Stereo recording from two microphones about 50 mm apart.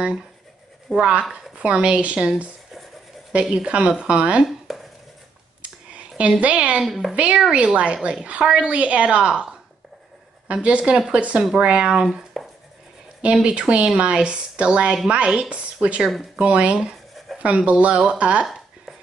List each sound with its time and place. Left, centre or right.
0.9 s a woman's voice: centre
1.3 s a woman's voice: centre
3.6 s a woman's voice: right
4.5 s a sound: centre
5.6 s a sound: right
6.4 s a woman's voice: right
6.8 s a woman's voice: centre
7.3 s a woman's voice: centre
12.4 s writing: centre
13.2 s a woman's voice: right
18.4 s a sound: centre